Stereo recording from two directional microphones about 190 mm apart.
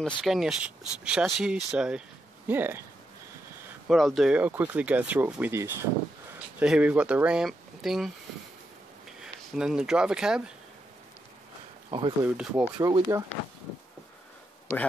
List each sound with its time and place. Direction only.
0.0 s speech: centre (ahead or behind)
3.8 s speech: centre (ahead or behind)
9.2 s speech: 5° right (ahead or behind)
11.9 s speech: 30° right (ahead or behind)
12.4 s speech: 5° right (ahead or behind)
12.7 s speech: 20° right (ahead or behind)